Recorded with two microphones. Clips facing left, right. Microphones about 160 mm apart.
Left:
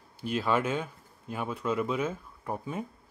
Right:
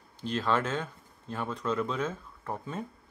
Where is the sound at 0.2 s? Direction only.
10° left (ahead or behind).